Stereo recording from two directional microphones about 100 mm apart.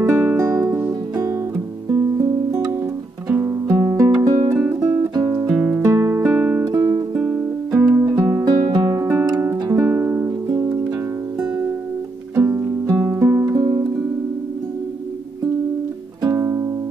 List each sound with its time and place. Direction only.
0.0 s music: 25° right (ahead or behind)
1.9 s music: 30° right (ahead or behind)
5.5 s music: 5° right (ahead or behind)
5.9 s music: 30° right (ahead or behind)
7.2 s music: 15° right (ahead or behind)
7.9 s music: 35° right (ahead or behind)
12.4 s music: 25° right (ahead or behind)
13.6 s music: 45° right (ahead or behind)
16.3 s music: 30° right (ahead or behind)